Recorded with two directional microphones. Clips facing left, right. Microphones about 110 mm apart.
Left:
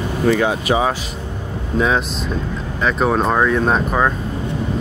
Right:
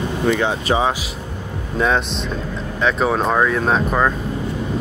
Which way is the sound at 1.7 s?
Centre (ahead or behind).